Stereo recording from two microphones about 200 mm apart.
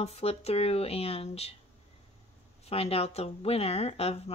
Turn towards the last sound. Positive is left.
turn(degrees=30)  # may be behind; listen again after turning